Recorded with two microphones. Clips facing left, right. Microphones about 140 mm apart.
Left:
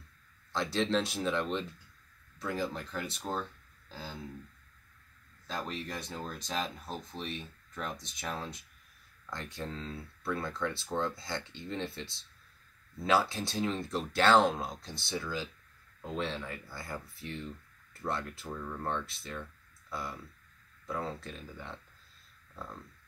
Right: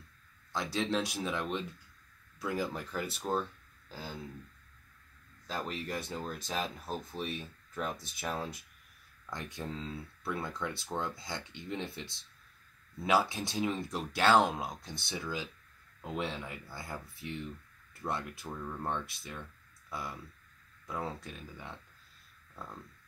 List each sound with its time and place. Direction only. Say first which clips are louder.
0.5 s speech: left 2 dB; 5° right (ahead or behind)
5.5 s speech: right 1 dB; 5° right (ahead or behind)
20.8 s speech: left 1 dB; 10° right (ahead or behind)